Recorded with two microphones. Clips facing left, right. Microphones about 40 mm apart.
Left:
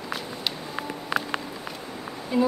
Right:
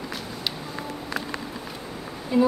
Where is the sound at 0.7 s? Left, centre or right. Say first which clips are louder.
Left 3 dB; left.